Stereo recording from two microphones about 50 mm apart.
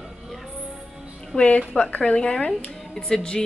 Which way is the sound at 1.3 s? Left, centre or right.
Left.